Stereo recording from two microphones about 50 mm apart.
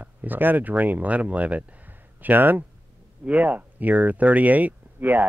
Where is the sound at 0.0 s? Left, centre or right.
Right.